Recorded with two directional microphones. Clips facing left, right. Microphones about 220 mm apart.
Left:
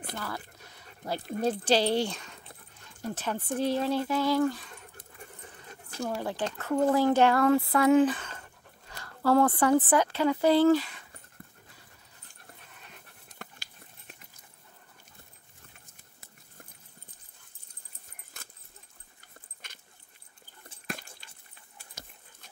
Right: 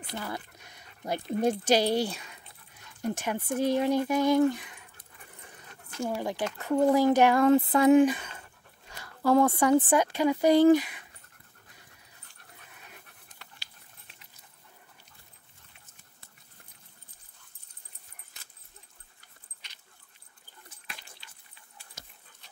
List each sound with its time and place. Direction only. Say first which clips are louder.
0.1 s speech: right 3 dB; 15° right (ahead or behind)
6.0 s speech: right 1 dB; 15° right (ahead or behind)
12.6 s dog: even; 5° right (ahead or behind)
13.4 s a sound: left 10 dB; 50° left (ahead or behind)
18.3 s dog: left 8 dB; 50° left (ahead or behind)
19.6 s dog: left 4 dB; 50° left (ahead or behind)
20.8 s dog: left 11 dB; 45° left (ahead or behind)